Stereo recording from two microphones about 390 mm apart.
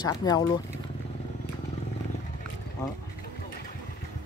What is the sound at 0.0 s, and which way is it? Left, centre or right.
Speech, centre.